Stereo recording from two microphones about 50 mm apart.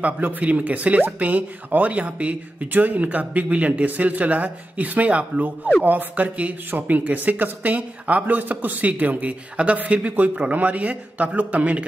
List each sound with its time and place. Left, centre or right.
0.0 s a man's voice: right